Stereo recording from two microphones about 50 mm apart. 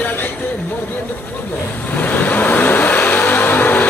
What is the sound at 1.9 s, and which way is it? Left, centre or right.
Vehicle, left.